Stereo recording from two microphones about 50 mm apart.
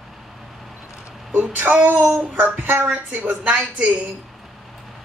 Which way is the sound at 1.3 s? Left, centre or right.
Right.